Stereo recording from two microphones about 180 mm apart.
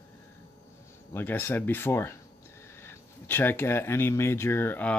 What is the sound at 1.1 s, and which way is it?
Speech, 10° left (ahead or behind).